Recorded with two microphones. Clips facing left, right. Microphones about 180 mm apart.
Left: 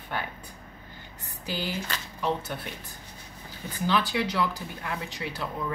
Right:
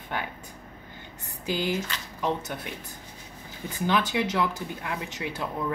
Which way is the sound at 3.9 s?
20° right (ahead or behind).